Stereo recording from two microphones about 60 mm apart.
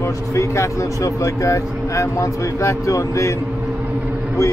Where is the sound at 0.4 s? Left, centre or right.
Left.